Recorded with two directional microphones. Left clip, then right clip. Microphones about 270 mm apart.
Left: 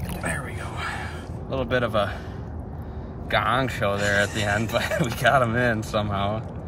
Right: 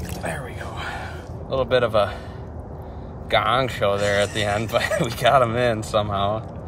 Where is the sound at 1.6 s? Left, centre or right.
Right.